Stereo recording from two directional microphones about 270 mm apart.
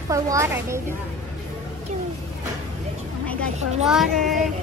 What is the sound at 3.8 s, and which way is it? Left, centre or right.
Child singing, centre.